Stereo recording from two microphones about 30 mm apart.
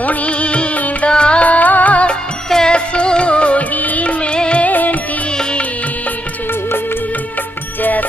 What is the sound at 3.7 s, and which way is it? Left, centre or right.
Music of bollywood, left.